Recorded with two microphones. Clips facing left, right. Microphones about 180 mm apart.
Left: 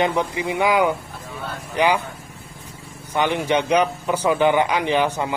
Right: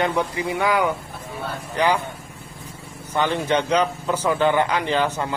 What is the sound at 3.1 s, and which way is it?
A man's voice, 15° left (ahead or behind).